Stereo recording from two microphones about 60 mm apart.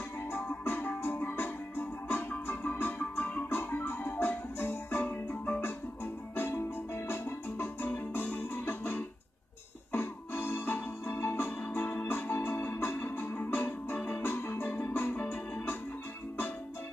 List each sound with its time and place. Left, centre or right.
0.3 s music: left